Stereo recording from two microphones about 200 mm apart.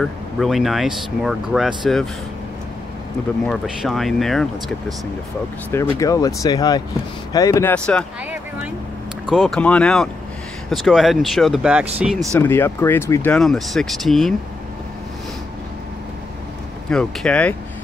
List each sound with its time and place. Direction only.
0.0 s speech: centre (ahead or behind)
3.4 s speech: centre (ahead or behind)
5.7 s speech: 15° left (ahead or behind)
9.3 s speech: centre (ahead or behind)
12.4 s speech: 10° left (ahead or behind)
16.9 s speech: 5° left (ahead or behind)